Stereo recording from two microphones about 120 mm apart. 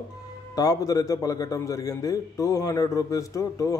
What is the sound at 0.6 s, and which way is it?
A man's voice, 30° left (ahead or behind).